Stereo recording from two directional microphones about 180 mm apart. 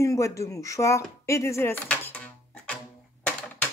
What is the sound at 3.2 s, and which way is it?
Typing, 5° left (ahead or behind).